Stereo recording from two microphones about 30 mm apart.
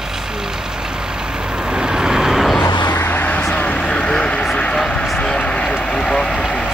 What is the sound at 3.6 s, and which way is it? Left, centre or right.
Vehicle, left.